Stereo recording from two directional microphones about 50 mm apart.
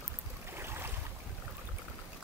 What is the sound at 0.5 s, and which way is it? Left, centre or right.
Boat, right.